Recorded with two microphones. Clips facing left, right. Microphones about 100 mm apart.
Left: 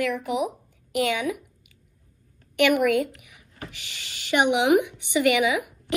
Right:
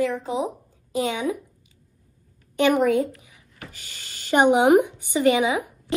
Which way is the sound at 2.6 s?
25° right (ahead or behind).